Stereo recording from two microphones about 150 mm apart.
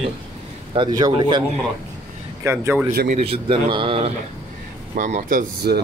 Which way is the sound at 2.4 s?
15° right (ahead or behind).